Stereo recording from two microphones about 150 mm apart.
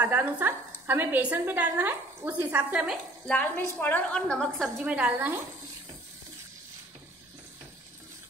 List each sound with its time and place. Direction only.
0.0 s a woman's voice: 10° right (ahead or behind)
3.3 s a woman's voice: 5° left (ahead or behind)
4.8 s a woman's voice: 10° right (ahead or behind)